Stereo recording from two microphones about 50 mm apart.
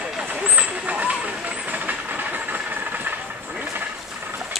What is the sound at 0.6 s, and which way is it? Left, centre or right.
Vehicle, right.